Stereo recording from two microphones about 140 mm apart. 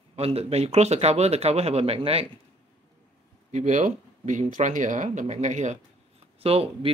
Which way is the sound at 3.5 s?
60° right (ahead or behind).